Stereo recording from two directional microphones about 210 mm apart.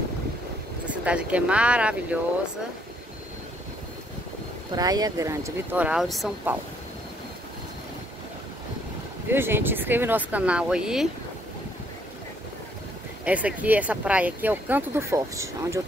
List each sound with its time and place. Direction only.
0.8 s speech: 5° right (ahead or behind)
4.7 s speech: 20° right (ahead or behind); by 6.5 s centre (ahead or behind)
9.3 s speech: 10° right (ahead or behind)
13.2 s speech: 5° right (ahead or behind)